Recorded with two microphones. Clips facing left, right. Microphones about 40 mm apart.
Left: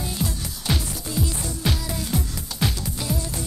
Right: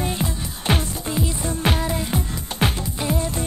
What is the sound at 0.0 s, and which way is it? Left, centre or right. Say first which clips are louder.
Music: right 3 dB; right.